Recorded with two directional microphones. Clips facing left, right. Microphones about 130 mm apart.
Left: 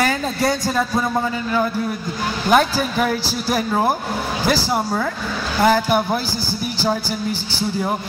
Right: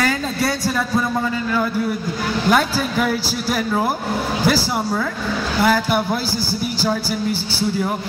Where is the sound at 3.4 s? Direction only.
20° left (ahead or behind).